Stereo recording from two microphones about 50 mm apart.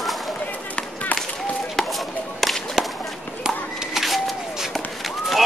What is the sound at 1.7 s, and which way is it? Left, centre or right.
Whip, centre.